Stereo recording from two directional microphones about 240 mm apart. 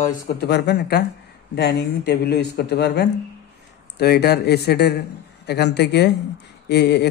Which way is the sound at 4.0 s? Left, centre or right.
Left.